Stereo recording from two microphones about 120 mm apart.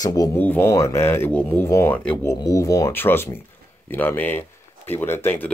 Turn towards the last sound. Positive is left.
turn(degrees=15)  # may be behind; listen again after turning